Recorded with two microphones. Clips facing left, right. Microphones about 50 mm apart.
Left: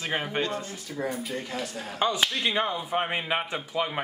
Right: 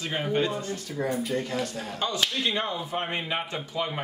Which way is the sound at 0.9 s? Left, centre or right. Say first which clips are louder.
Right 3 dB; centre.